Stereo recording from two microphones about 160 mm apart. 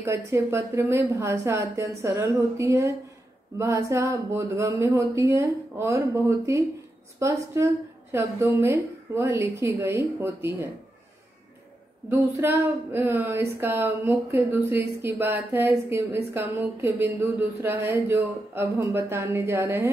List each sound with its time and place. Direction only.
0.0 s a woman's voice: 15° right (ahead or behind)
12.1 s a woman's voice: 15° right (ahead or behind)